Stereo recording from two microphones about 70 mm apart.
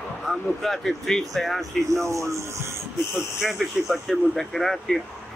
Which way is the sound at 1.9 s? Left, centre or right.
Right.